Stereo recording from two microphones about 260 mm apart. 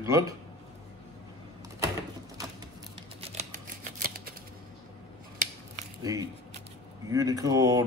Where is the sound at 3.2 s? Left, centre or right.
Right.